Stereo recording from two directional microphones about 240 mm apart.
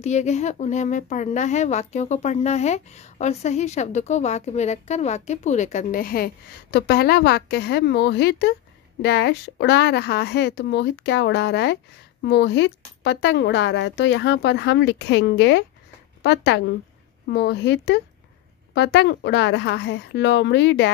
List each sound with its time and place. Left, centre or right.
0.0 s a woman's voice: left